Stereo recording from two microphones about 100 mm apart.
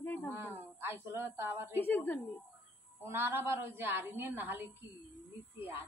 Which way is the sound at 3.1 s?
20° right (ahead or behind).